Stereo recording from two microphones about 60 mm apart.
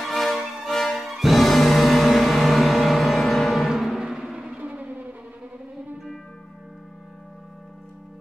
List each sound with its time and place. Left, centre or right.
0.0 s music: centre
4.6 s music: right